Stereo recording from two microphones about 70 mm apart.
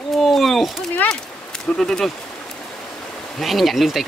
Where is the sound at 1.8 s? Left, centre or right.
Centre.